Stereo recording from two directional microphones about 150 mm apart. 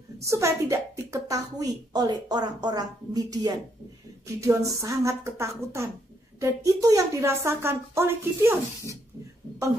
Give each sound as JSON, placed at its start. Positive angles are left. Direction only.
{"t": 0.2, "sound": "a woman's voice", "side_deg": -20}